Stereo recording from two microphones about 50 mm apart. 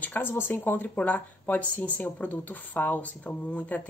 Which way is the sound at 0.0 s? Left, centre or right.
Left.